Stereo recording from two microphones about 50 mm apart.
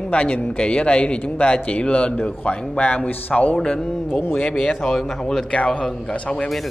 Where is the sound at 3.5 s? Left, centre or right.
Centre.